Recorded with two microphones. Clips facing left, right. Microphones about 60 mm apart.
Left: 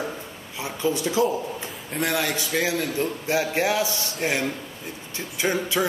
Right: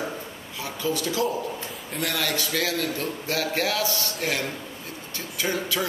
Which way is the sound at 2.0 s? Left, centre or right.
Centre.